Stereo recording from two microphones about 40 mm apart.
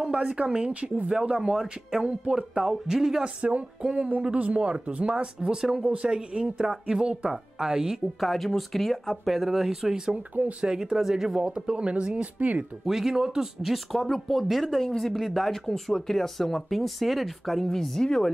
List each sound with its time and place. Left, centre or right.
0.1 s speech: right
3.3 s a sound: right
4.2 s speech: right; by 8.0 s centre
8.2 s speech: centre; by 11.0 s right
11.0 s speech: centre; by 12.3 s right
12.4 s a sound: right
12.8 s speech: centre
14.0 s speech: centre